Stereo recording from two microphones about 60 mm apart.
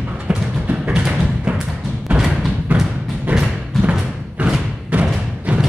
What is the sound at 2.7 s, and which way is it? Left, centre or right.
Music, right.